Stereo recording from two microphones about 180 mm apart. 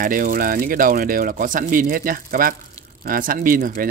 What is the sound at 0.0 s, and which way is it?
Speech, 50° right (ahead or behind).